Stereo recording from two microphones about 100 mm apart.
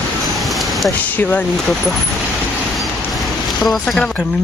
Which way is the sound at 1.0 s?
15° left (ahead or behind).